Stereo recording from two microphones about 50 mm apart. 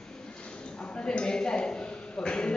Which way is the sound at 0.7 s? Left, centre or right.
Left.